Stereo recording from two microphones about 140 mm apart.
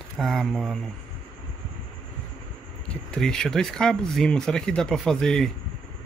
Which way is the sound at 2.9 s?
5° left (ahead or behind).